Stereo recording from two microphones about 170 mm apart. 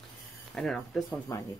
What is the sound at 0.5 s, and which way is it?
Speech, centre (ahead or behind).